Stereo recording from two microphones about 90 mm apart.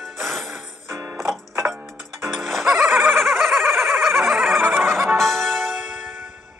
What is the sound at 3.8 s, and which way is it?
Neigh, 5° left (ahead or behind).